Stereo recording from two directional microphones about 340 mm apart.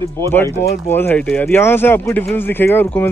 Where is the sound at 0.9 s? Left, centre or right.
Centre.